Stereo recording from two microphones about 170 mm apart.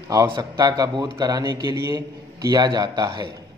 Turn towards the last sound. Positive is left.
turn(degrees=-25)  # may be behind; listen again after turning